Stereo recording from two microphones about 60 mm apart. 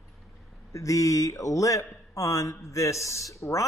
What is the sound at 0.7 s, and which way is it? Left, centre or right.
Speech, left.